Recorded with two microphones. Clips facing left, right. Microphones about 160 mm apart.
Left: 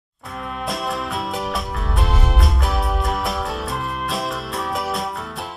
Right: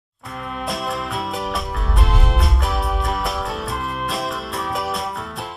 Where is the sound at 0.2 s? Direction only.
Centre (ahead or behind).